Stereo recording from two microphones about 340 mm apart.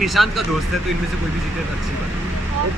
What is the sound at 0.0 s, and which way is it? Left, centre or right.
Speech, centre.